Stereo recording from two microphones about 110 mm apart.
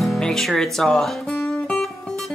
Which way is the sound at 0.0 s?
Centre (ahead or behind).